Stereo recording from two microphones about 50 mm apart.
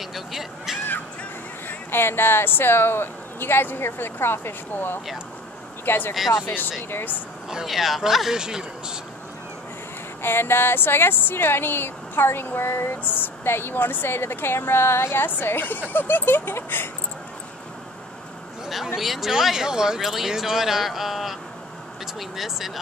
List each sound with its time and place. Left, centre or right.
0.0 s a sound: centre
1.7 s speech: left
6.1 s a man's voice: centre
6.4 s a woman's voice: left
7.4 s a man's voice: centre
10.2 s speech: left
15.2 s a woman's voice: left
18.9 s a man's voice: centre